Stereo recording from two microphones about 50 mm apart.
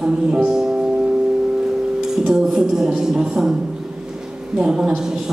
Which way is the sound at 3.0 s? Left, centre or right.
Centre.